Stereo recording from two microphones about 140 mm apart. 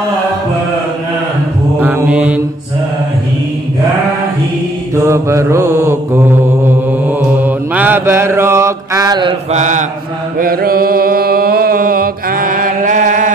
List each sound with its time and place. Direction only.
1.8 s mantra: 15° right (ahead or behind)
4.9 s mantra: 20° right (ahead or behind)
9.5 s mantra: 60° right (ahead or behind)
10.4 s mantra: 90° right; by 13.3 s 65° right (ahead or behind)